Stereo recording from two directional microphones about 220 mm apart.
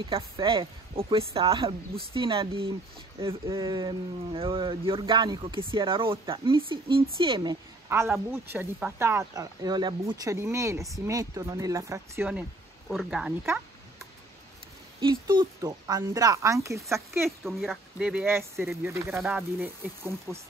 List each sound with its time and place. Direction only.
0.0 s speech: 25° right (ahead or behind)
7.9 s speech: 10° right (ahead or behind)
15.0 s speech: 20° right (ahead or behind)
17.4 s speech: centre (ahead or behind)